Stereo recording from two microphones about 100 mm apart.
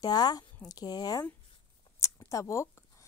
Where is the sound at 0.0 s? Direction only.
40° left (ahead or behind).